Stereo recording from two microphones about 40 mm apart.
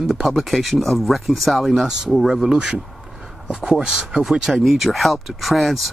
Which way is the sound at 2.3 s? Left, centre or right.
Centre.